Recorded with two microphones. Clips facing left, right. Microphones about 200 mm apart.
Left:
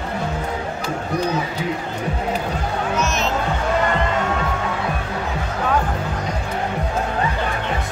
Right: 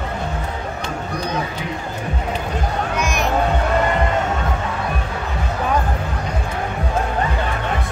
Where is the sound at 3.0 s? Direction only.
15° right (ahead or behind).